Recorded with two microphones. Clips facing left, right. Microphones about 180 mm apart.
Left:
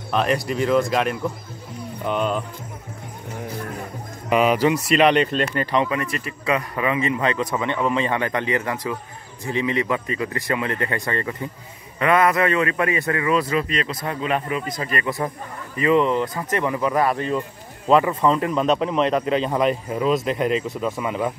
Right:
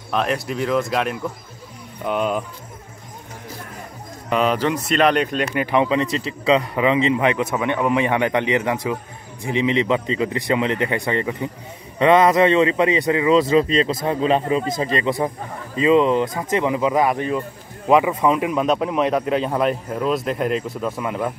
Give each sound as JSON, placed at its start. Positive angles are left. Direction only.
{"t": 0.1, "sound": "a man's voice", "side_deg": 0}
{"t": 4.3, "sound": "a man's voice", "side_deg": 10}